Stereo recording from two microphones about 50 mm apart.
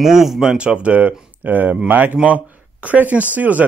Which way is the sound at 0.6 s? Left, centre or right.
Right.